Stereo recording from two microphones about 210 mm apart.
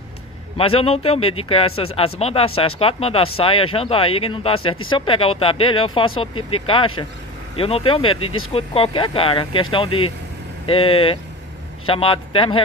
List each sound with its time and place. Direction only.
0.6 s speech: 25° left (ahead or behind)
8.2 s speech: 90° left
8.5 s speech: 25° left (ahead or behind)